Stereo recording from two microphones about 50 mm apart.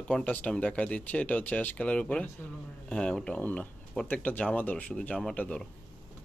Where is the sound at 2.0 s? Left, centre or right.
Centre.